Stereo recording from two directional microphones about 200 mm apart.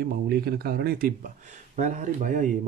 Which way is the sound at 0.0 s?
50° right (ahead or behind).